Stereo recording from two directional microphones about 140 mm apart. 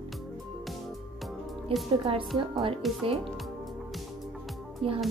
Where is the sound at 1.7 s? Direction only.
40° right (ahead or behind).